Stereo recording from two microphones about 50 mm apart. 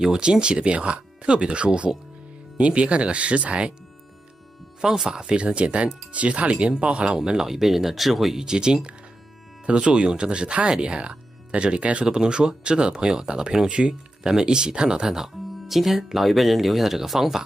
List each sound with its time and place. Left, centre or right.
0.0 s speech: centre
4.8 s speech: centre
8.5 s speech: centre